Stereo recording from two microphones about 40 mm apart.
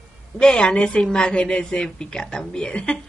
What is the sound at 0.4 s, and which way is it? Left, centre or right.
A woman's voice, left.